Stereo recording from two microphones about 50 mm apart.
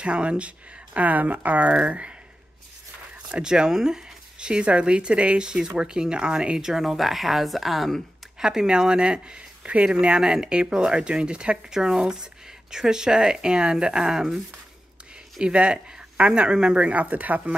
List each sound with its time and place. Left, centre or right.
0.0 s speech: right
0.9 s speech: right
3.3 s speech: centre
8.4 s speech: centre
15.4 s speech: right